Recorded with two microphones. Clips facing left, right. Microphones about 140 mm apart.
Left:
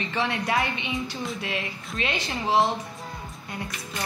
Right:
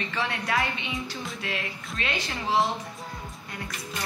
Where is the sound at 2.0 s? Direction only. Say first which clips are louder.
Left 3 dB; 20° left (ahead or behind).